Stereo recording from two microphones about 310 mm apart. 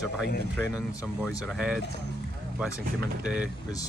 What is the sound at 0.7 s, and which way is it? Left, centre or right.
Speech, centre.